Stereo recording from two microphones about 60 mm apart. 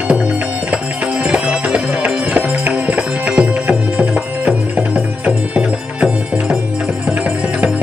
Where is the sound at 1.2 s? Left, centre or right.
Centre.